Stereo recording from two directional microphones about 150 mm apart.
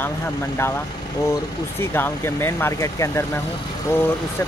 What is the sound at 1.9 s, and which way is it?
Speech, 15° left (ahead or behind).